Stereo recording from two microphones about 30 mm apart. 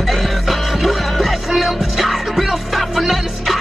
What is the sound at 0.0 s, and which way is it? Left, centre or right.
Music, centre.